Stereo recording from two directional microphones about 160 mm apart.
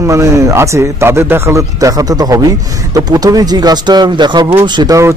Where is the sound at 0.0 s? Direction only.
20° right (ahead or behind).